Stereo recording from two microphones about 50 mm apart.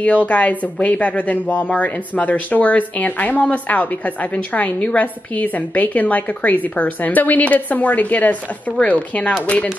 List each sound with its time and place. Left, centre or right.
0.0 s a woman's voice: left